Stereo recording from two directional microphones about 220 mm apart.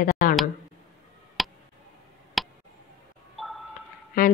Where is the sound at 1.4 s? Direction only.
Centre (ahead or behind).